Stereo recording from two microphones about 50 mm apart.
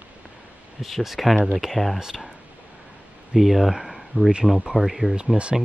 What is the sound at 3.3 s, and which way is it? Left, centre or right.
Speech, centre.